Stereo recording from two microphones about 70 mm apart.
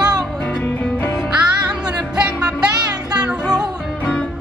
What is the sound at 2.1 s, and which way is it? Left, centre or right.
Music, centre.